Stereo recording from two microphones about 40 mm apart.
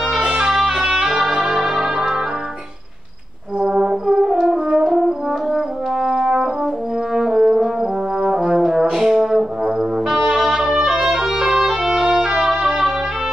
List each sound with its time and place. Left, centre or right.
0.4 s music: centre
3.8 s brass instrument: centre
6.0 s brass instrument: centre
11.6 s music: centre